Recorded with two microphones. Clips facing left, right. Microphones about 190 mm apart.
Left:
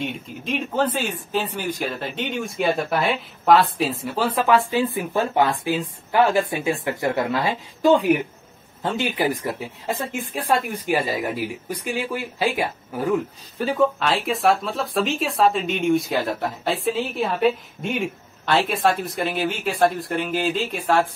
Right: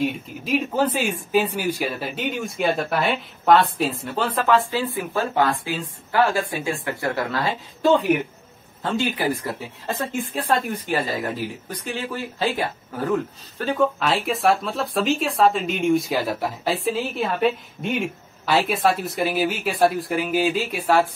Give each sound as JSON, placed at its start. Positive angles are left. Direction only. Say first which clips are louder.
{"t": 0.0, "sound": "speech", "louder": "right 4 dB", "side_deg": -5}